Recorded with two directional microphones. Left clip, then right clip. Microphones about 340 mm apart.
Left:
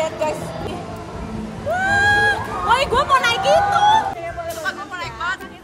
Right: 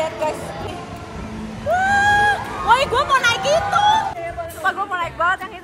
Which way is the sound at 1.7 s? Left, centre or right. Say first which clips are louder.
Right 1 dB; centre.